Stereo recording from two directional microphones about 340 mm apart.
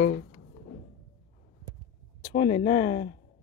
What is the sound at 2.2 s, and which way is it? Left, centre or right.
Speech, left.